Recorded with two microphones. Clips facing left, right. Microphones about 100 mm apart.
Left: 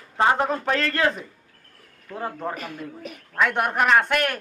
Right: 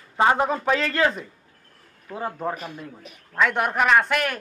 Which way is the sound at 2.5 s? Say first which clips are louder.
Left 1 dB; 60° left (ahead or behind).